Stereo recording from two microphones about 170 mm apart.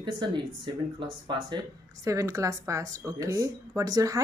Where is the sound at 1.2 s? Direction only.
25° right (ahead or behind).